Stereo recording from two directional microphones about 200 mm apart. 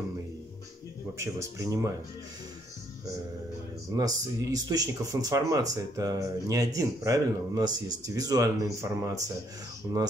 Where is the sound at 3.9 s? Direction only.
15° right (ahead or behind).